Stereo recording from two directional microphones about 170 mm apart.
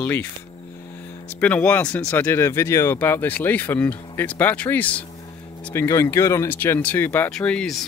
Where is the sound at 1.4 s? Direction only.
10° left (ahead or behind).